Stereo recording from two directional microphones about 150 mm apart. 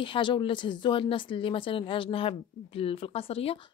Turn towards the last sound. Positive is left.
turn(degrees=40)  # may be behind; listen again after turning